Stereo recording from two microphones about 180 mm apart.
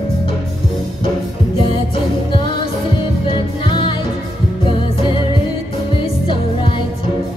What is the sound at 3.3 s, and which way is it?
Music, 25° left (ahead or behind).